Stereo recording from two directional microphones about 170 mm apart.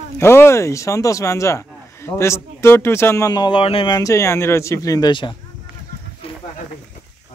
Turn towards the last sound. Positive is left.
turn(degrees=35)  # may be behind; listen again after turning